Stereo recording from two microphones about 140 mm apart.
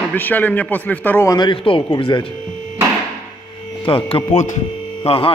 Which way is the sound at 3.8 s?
35° left (ahead or behind).